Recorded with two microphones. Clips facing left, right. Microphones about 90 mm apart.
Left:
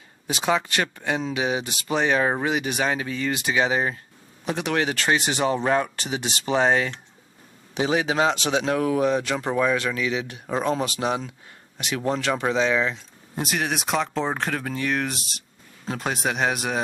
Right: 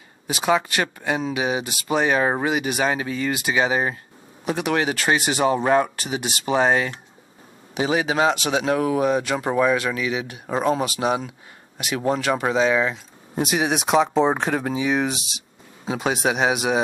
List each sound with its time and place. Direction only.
0.3 s speech: 10° right (ahead or behind)
14.0 s speech: 35° right (ahead or behind)
14.3 s speech: 5° right (ahead or behind)